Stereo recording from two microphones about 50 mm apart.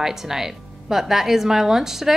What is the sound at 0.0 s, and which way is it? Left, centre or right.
A woman's voice, centre.